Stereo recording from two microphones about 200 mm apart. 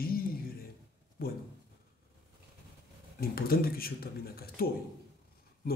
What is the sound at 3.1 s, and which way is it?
Speech, 50° left (ahead or behind).